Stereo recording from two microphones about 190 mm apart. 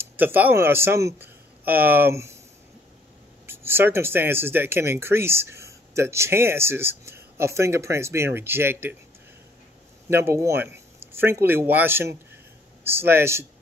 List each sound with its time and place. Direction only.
0.0 s a man's voice: 10° right (ahead or behind)
3.4 s speech: 10° right (ahead or behind)
10.0 s speech: 15° right (ahead or behind)